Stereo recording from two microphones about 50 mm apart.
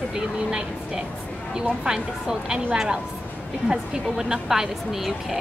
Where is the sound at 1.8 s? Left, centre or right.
Centre.